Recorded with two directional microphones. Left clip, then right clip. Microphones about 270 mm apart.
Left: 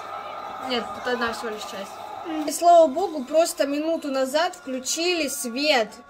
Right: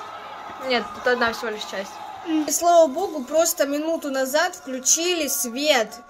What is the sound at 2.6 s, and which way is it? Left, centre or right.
Speech, centre.